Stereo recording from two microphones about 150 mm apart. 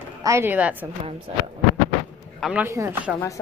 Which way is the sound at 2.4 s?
5° right (ahead or behind).